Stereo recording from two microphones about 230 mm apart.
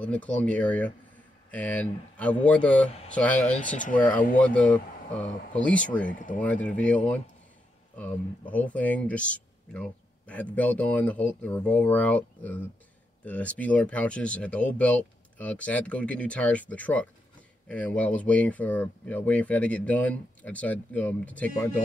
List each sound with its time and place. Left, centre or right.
0.0 s speech: centre
3.5 s speech: left
4.4 s speech: centre
6.0 s speech: left
6.4 s speech: centre
8.0 s speech: centre